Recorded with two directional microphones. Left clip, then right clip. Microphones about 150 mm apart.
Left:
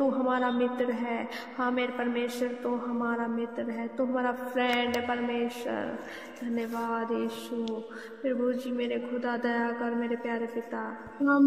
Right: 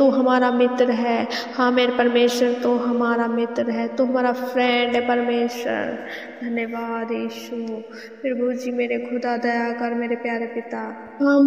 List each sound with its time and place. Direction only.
0.0 s a man's voice: 45° right (ahead or behind); by 8.7 s 20° right (ahead or behind)
8.7 s a woman's voice: 35° right (ahead or behind)